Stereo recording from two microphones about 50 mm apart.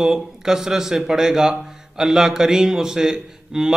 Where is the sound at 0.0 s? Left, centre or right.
Centre.